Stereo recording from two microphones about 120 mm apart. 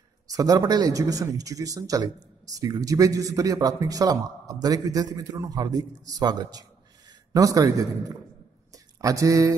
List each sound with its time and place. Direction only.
0.3 s speech: 30° right (ahead or behind)
8.7 s mantra: 30° right (ahead or behind)